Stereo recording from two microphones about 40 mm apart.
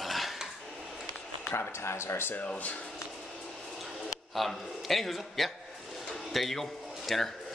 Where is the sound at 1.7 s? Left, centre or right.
Left.